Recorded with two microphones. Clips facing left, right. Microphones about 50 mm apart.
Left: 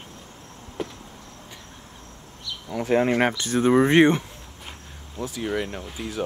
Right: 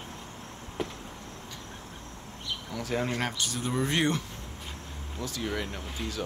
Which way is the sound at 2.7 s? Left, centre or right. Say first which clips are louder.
Left 10 dB; left.